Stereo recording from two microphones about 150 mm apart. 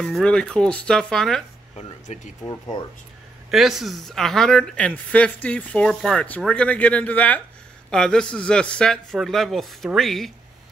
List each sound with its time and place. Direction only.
0.0 s a man's voice: 5° left (ahead or behind)
2.1 s speech: 50° left (ahead or behind)
3.4 s a man's voice: centre (ahead or behind)